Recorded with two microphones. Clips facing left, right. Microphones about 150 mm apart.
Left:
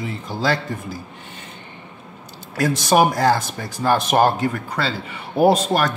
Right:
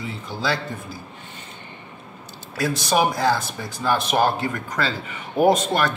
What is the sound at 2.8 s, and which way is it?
Speech, 50° left (ahead or behind).